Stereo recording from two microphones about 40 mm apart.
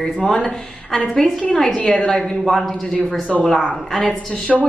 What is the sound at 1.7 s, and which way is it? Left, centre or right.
Speech, centre.